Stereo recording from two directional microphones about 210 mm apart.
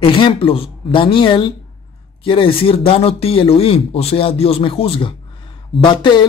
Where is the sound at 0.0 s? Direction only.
25° left (ahead or behind).